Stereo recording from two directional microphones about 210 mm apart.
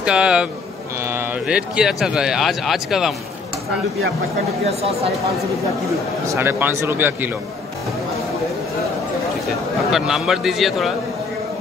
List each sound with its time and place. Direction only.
0.0 s speech: 5° right (ahead or behind)
4.6 s speech: 30° right (ahead or behind)
6.2 s speech: 10° right (ahead or behind)
9.8 s speech: centre (ahead or behind)